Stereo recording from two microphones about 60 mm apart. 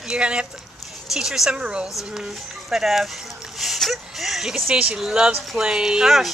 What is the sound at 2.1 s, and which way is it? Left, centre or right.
Speech, centre.